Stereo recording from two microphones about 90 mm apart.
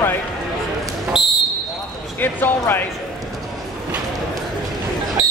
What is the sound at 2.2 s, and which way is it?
Speech, 20° left (ahead or behind).